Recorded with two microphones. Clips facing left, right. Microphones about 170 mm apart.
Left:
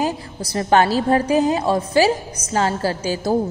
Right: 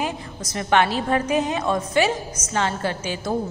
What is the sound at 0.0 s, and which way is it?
A woman's voice, 35° left (ahead or behind).